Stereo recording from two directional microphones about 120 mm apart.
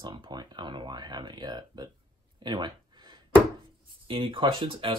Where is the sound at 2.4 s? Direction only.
40° right (ahead or behind).